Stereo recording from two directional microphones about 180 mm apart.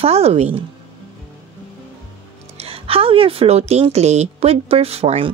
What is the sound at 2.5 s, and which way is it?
Speech, 35° right (ahead or behind).